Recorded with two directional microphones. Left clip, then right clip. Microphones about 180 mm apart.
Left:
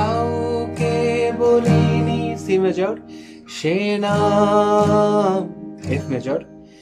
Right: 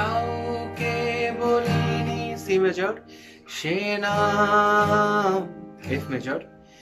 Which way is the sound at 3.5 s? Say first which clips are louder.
Left 5 dB; 25° left (ahead or behind).